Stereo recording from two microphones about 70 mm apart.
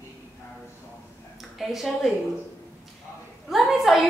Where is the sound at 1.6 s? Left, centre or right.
Centre.